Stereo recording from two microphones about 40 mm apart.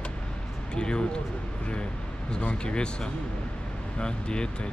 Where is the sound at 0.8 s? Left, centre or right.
Left.